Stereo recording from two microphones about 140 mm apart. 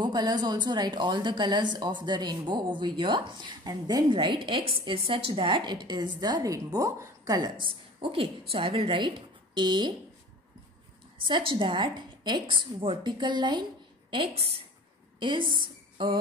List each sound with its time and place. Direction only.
0.0 s a woman's voice: 30° right (ahead or behind)
11.2 s a woman's voice: 35° right (ahead or behind)